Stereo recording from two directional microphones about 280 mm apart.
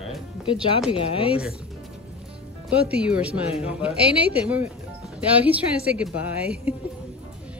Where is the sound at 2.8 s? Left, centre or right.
Centre.